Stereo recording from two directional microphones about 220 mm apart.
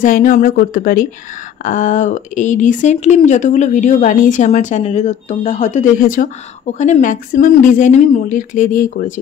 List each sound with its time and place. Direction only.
0.0 s speech: 35° left (ahead or behind)